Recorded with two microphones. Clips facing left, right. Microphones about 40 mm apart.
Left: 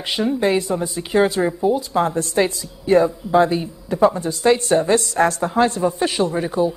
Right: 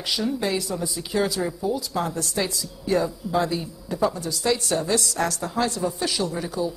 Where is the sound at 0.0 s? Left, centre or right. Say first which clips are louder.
Left 6 dB; left.